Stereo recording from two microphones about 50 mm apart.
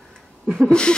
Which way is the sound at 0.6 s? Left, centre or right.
Centre.